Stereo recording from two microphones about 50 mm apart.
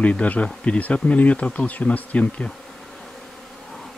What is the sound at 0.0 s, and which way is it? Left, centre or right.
Speech, left.